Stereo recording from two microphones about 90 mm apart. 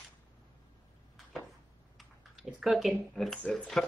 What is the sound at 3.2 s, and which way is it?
Speech, 5° left (ahead or behind).